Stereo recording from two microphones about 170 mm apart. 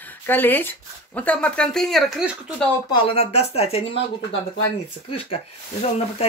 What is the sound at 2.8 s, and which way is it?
Speech, 30° left (ahead or behind).